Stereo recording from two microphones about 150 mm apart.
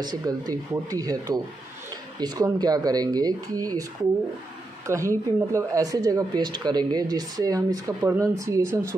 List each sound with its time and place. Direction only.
0.0 s speech: 25° right (ahead or behind)
4.8 s speech: 20° right (ahead or behind)